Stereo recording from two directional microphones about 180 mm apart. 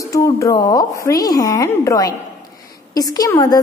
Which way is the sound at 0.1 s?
15° left (ahead or behind).